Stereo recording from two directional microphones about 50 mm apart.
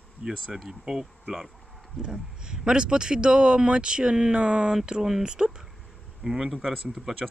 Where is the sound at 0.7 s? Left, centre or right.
Centre.